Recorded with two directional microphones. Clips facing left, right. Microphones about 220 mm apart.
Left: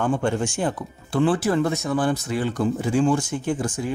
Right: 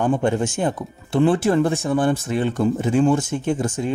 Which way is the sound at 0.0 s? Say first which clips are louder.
Right 3 dB; 20° right (ahead or behind).